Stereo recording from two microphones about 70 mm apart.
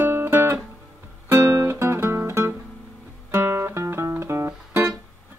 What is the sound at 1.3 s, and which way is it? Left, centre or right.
Music, right.